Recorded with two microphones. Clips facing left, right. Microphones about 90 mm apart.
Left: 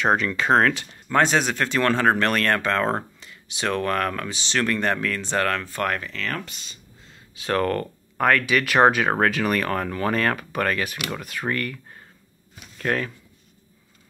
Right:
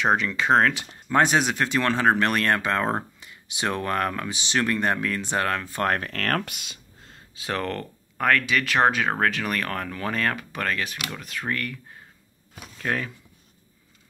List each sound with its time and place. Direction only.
0.0 s speech: centre (ahead or behind)
5.9 s speech: 55° right (ahead or behind); by 6.8 s 80° right
7.4 s speech: centre (ahead or behind)